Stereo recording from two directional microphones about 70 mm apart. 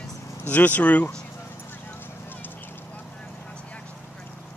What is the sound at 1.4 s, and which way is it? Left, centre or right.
Clip-clop, left.